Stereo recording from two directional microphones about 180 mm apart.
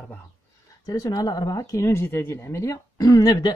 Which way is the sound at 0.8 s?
20° left (ahead or behind).